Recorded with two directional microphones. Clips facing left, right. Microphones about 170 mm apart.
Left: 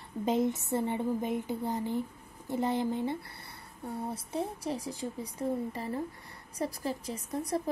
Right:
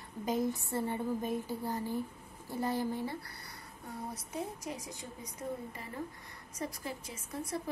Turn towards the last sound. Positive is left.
turn(degrees=35)  # may be behind; listen again after turning